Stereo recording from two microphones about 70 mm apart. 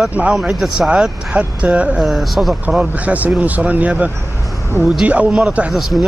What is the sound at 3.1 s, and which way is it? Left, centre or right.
Speech, right.